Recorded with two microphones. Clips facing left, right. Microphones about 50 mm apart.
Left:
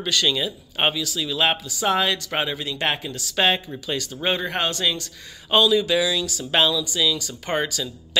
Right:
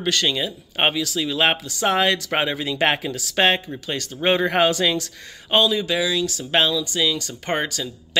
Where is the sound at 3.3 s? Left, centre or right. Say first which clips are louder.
Right 2 dB; right.